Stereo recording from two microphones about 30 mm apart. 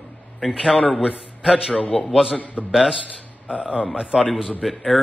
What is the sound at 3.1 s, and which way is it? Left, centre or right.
Speech, right.